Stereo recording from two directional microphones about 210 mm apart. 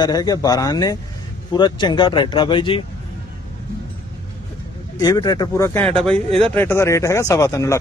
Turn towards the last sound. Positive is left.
turn(degrees=15)  # may be behind; listen again after turning